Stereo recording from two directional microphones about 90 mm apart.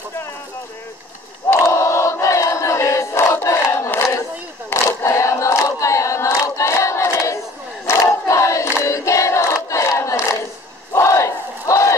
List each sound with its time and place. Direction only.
1.5 s crowd: 30° left (ahead or behind)
4.6 s choir: 35° left (ahead or behind)
7.8 s crowd: 30° left (ahead or behind)